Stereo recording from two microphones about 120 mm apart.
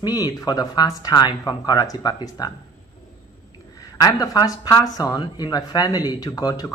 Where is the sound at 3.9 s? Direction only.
30° left (ahead or behind).